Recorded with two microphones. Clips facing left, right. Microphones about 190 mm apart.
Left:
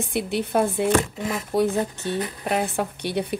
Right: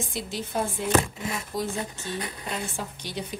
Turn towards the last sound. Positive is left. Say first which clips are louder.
# left 9 dB
turn(degrees=60)  # may be behind; listen again after turning